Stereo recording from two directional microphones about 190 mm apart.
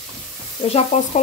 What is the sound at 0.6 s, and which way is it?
Sizzle, 30° left (ahead or behind).